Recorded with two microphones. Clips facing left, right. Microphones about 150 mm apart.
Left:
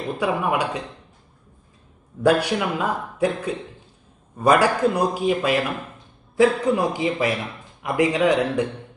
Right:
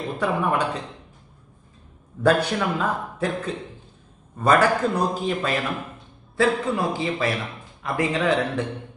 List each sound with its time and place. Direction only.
0.2 s a man's voice: 10° left (ahead or behind)
2.2 s a man's voice: 10° left (ahead or behind)